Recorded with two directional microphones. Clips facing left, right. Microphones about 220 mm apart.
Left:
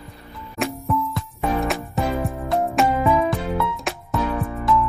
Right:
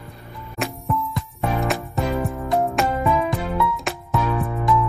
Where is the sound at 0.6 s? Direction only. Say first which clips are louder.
Left 2 dB; centre (ahead or behind).